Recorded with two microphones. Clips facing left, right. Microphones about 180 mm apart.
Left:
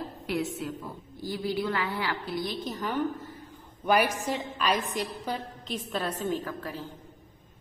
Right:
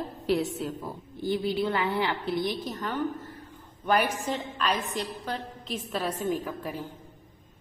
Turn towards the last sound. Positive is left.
turn(degrees=-10)  # may be behind; listen again after turning